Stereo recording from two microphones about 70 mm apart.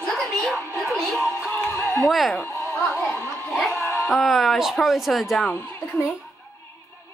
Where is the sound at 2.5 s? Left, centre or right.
Left.